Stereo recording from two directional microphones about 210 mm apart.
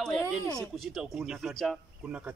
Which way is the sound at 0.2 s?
15° left (ahead or behind).